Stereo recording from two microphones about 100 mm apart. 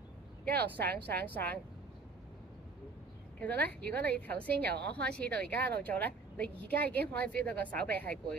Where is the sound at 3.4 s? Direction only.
15° left (ahead or behind).